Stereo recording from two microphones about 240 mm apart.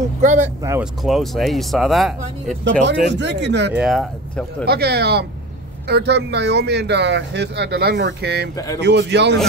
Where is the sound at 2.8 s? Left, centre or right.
Right.